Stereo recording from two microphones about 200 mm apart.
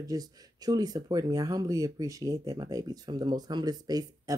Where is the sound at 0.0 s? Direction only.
20° right (ahead or behind).